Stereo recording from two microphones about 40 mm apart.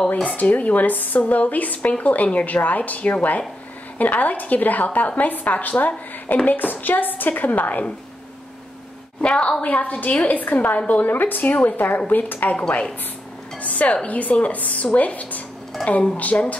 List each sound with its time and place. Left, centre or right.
0.4 s a woman's voice: left
9.2 s a woman's voice: left
9.8 s a woman's voice: left
12.5 s a woman's voice: left
13.6 s speech: left
15.8 s a woman's voice: centre
16.2 s speech: left